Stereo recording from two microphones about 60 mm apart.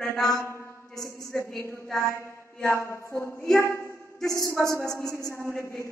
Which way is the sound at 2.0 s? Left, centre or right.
Left.